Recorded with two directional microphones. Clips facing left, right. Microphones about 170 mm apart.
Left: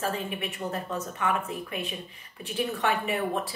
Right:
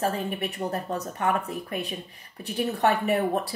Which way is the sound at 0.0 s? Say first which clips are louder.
Right 3 dB; 40° right (ahead or behind).